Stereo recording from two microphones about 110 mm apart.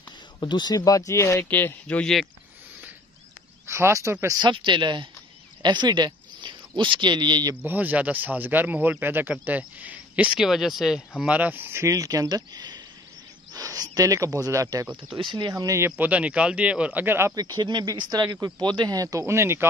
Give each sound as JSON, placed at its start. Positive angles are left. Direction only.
{"t": 0.4, "sound": "speech", "side_deg": 40}
{"t": 3.6, "sound": "speech", "side_deg": -25}
{"t": 4.4, "sound": "speech", "side_deg": -45}
{"t": 7.6, "sound": "speech", "side_deg": -15}
{"t": 15.1, "sound": "speech", "side_deg": -45}
{"t": 15.5, "sound": "speech", "side_deg": -30}
{"t": 16.0, "sound": "speech", "side_deg": -10}
{"t": 17.4, "sound": "speech", "side_deg": -40}